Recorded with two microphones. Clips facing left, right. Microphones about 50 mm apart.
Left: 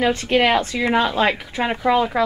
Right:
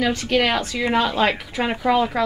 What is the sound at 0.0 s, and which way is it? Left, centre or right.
Speech, left.